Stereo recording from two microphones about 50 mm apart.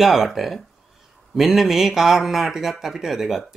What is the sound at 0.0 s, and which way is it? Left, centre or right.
Speech, centre.